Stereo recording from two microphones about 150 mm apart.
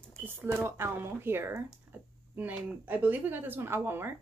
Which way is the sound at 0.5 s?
15° right (ahead or behind).